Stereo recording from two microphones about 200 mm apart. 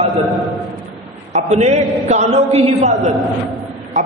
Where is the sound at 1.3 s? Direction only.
35° right (ahead or behind).